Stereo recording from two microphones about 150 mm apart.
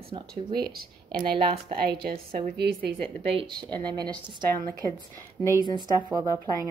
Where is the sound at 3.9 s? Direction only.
30° right (ahead or behind).